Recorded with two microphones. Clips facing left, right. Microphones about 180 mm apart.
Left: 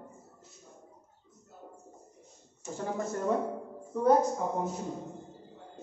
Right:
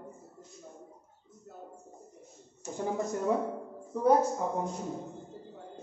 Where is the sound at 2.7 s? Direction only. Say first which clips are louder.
Right 2 dB; 15° right (ahead or behind).